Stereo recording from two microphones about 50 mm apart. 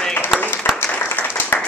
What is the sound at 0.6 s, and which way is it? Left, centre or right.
Applause, left.